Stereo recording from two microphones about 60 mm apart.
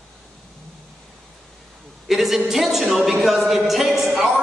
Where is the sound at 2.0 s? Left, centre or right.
Centre.